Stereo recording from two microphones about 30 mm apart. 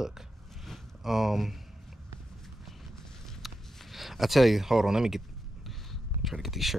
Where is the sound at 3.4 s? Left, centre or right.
Centre.